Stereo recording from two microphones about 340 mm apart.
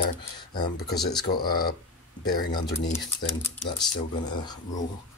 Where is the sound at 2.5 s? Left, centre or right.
Centre.